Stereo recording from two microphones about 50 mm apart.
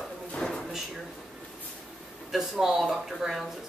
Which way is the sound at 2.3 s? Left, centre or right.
Centre.